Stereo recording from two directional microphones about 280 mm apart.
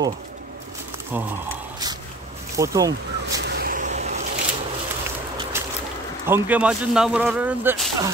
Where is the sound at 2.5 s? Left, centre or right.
Centre.